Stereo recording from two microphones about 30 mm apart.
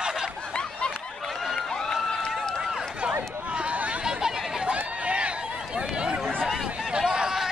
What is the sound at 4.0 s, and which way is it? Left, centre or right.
Chatter, right.